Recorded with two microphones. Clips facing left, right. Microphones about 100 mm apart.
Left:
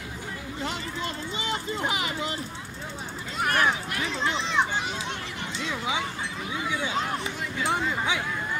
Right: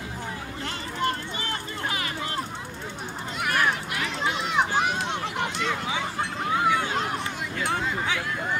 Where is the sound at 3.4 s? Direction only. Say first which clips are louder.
Left 1 dB; 40° left (ahead or behind).